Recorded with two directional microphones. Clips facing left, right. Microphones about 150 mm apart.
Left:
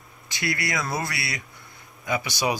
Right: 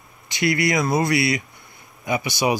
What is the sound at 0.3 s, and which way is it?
Speech, 20° right (ahead or behind).